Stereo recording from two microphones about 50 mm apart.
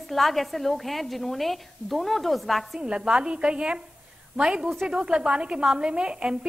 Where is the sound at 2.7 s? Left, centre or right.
Centre.